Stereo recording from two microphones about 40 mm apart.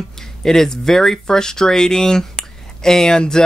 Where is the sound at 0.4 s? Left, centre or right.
Centre.